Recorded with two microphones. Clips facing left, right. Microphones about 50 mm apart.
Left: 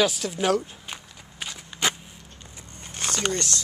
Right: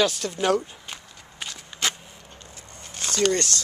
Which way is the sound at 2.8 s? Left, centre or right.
Left.